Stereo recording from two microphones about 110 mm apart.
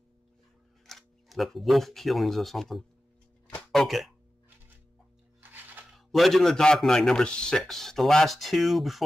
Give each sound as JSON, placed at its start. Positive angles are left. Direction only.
{"t": 0.8, "sound": "speech", "side_deg": 0}
{"t": 5.4, "sound": "a sound", "side_deg": -15}
{"t": 5.9, "sound": "a man's voice", "side_deg": 0}